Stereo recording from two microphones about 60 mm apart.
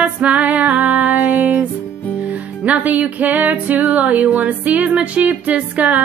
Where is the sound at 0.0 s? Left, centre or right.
Right.